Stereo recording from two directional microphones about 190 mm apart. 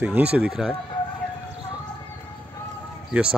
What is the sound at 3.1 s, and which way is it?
Speech, 5° right (ahead or behind).